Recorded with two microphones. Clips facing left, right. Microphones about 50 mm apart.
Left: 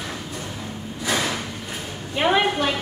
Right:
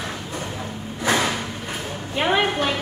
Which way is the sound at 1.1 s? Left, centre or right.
Right.